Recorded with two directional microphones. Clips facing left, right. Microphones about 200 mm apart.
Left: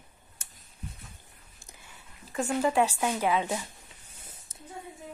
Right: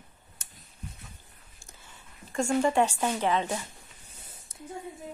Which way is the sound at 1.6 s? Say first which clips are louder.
Even; 15° left (ahead or behind).